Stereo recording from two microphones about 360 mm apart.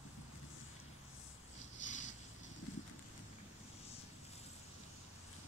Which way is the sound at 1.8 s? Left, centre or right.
Centre.